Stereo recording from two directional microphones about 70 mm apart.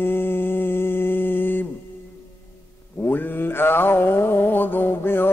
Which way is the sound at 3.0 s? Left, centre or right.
Left.